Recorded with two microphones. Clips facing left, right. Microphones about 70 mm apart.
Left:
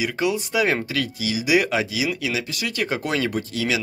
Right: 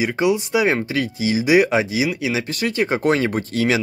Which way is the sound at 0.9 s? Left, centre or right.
Right.